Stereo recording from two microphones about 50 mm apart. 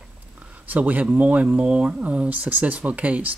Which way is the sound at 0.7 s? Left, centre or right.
Right.